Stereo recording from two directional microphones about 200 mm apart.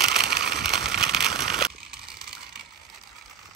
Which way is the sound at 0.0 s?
50° right (ahead or behind).